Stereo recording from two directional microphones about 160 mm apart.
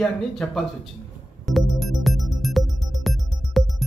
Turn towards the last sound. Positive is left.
turn(degrees=0)  # may be behind; listen again after turning